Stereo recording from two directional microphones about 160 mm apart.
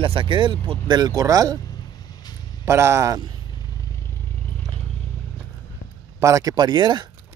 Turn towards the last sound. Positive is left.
turn(degrees=-30)  # may be behind; listen again after turning